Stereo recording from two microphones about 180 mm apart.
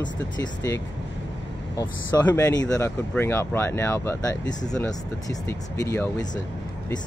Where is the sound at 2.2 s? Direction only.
10° left (ahead or behind).